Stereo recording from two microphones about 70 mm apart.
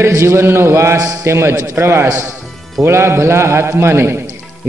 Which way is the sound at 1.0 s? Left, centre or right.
Right.